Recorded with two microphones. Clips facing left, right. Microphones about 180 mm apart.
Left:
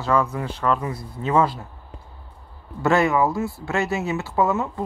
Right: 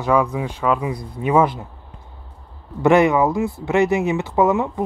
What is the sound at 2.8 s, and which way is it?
Speech, 20° right (ahead or behind).